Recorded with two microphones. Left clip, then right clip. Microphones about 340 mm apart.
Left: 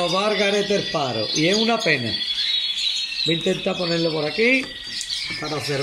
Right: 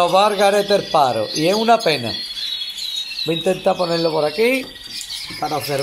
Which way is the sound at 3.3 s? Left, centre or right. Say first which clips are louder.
Right 7 dB; right.